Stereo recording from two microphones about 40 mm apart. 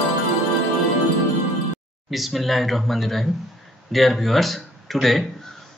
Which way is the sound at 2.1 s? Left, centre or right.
Centre.